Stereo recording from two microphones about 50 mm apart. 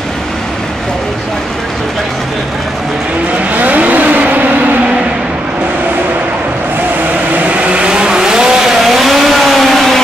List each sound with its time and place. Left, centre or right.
3.5 s vehicle: right
7.3 s vehicle: right; by 10.0 s centre